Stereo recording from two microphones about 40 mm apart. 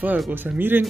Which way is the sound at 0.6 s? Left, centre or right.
Right.